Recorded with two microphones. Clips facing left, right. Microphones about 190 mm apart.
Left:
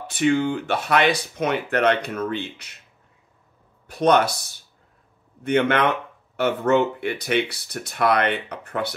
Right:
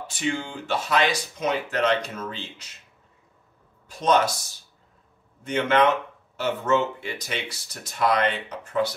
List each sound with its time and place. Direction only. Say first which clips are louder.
0.0 s speech: left 8 dB; 60° left (ahead or behind)
3.8 s speech: left 3 dB; 60° left (ahead or behind)